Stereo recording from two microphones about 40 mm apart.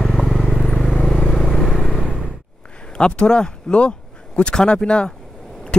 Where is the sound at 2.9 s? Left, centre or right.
Left.